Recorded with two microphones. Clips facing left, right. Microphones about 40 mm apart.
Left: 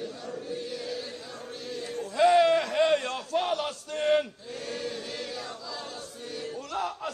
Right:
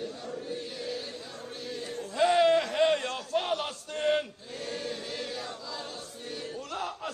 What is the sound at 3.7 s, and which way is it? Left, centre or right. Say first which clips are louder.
Chant: left 3 dB; left.